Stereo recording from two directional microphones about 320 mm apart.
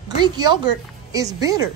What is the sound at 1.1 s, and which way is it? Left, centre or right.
Speech, centre.